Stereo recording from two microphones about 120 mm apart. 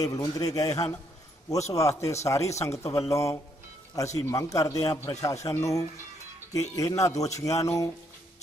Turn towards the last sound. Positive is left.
turn(degrees=25)  # may be behind; listen again after turning